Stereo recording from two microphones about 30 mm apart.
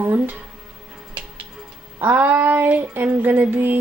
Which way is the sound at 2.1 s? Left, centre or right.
Right.